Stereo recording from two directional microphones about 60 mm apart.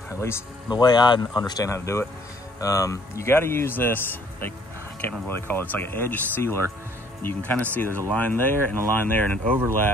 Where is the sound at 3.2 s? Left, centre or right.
Left.